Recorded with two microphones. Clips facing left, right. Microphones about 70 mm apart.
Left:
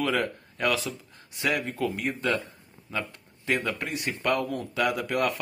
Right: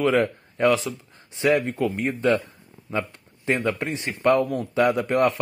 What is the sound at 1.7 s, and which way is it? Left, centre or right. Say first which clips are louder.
Speech: right 4 dB; centre.